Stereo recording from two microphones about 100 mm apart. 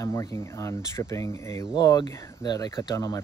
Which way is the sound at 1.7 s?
40° left (ahead or behind).